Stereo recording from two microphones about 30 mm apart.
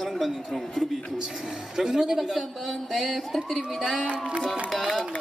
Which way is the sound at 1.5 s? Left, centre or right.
Centre.